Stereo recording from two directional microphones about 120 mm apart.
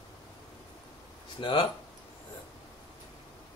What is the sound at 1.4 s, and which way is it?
Speech, 45° left (ahead or behind).